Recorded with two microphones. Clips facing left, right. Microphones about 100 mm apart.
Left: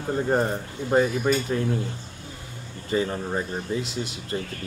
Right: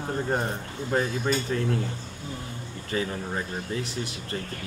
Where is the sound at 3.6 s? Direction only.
20° left (ahead or behind).